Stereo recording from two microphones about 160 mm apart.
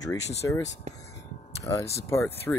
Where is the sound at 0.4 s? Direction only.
15° left (ahead or behind).